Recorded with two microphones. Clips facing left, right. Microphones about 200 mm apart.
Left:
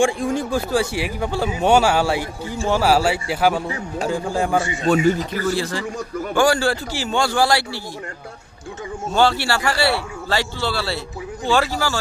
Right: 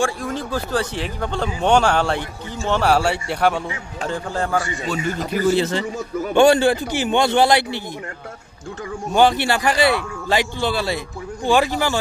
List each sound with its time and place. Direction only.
0.3 s speech: 10° left (ahead or behind)
5.3 s a man's voice: 20° right (ahead or behind)
9.1 s speech: 15° right (ahead or behind)